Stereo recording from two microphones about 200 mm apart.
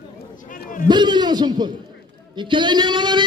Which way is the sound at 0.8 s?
20° right (ahead or behind).